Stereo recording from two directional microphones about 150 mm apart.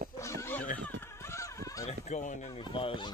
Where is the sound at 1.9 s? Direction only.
50° left (ahead or behind).